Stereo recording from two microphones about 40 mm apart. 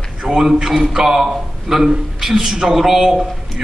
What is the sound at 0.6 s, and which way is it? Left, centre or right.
A man's voice, centre.